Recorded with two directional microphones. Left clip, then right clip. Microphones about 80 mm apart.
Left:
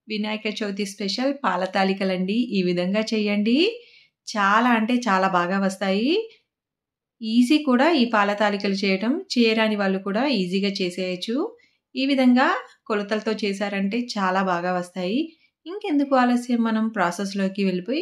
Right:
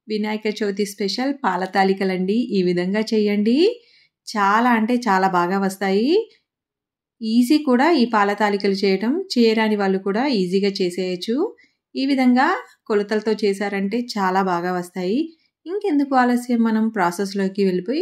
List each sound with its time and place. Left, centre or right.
0.1 s speech: right